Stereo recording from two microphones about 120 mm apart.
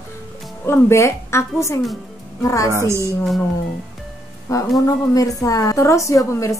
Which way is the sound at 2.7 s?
25° right (ahead or behind).